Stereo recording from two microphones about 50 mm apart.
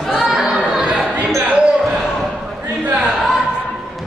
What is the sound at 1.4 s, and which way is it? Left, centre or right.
Basketball bounce, right.